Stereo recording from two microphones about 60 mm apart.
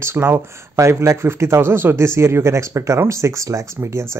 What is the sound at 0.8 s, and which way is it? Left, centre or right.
Speech, right.